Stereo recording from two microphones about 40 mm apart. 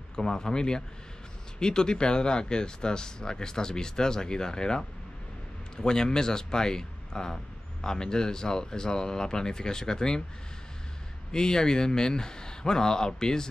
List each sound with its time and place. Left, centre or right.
0.1 s speech: centre
11.3 s speech: centre